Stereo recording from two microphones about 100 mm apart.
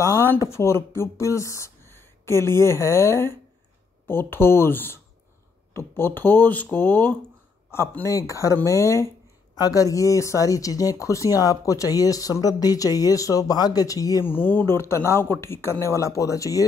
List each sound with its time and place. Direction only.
0.0 s a sound: 30° left (ahead or behind)
0.4 s speech: 25° left (ahead or behind)
14.2 s speech: 20° left (ahead or behind)